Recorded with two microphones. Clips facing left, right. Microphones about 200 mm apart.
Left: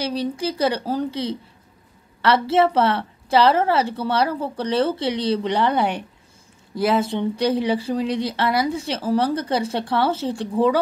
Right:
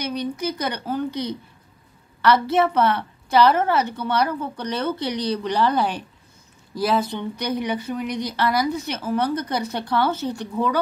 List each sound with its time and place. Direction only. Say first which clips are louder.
0.0 s speech: left 2 dB; 30° left (ahead or behind)